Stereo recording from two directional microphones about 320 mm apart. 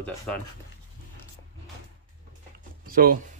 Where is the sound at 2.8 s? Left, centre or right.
Right.